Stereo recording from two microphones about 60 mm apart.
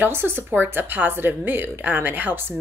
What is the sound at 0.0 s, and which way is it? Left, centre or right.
Speech, right.